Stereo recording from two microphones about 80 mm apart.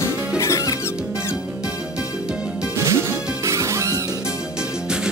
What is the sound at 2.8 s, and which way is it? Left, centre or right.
Music, right.